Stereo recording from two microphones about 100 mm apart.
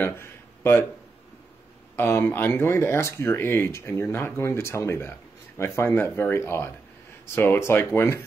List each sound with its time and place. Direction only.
0.0 s speech: 25° left (ahead or behind)
2.0 s speech: 20° left (ahead or behind)